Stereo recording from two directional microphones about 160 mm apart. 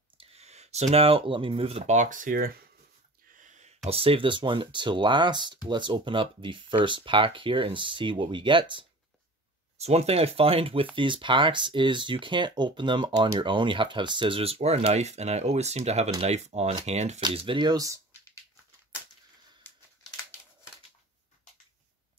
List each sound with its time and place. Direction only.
0.2 s a sound: 40° right (ahead or behind)
0.9 s speech: 35° right (ahead or behind)
17.2 s speech: 35° right (ahead or behind)